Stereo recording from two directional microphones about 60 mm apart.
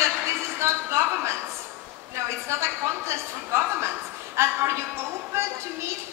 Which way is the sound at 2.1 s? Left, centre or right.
Right.